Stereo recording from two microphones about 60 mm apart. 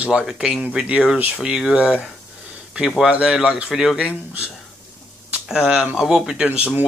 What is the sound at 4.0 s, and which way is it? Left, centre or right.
Speech, right.